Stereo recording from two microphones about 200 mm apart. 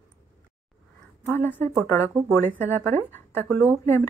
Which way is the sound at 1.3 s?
10° left (ahead or behind).